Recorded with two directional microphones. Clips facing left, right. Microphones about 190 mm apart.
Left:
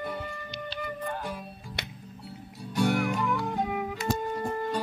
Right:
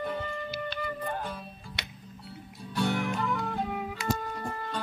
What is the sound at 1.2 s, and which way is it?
Music, 10° left (ahead or behind).